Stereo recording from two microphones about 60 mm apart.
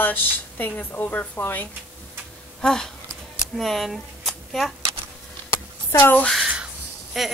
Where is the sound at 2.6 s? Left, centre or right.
Centre.